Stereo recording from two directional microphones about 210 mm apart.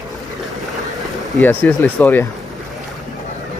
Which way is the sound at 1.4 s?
10° left (ahead or behind).